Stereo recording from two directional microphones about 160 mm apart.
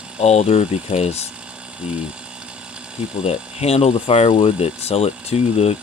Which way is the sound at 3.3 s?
40° left (ahead or behind).